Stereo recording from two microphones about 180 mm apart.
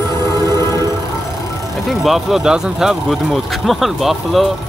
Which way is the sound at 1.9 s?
Centre (ahead or behind).